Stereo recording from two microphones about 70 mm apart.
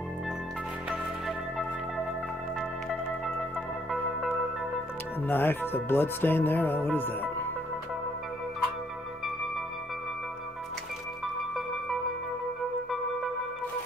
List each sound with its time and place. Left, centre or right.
3.9 s organ: centre
5.2 s speech: left